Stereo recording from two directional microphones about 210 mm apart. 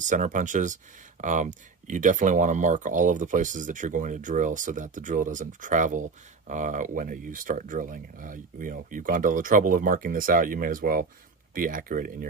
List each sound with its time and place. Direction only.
0.0 s speech: 35° right (ahead or behind)